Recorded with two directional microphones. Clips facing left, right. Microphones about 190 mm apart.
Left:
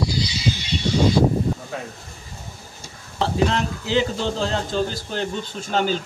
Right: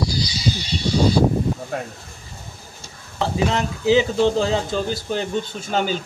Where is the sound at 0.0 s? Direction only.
40° right (ahead or behind).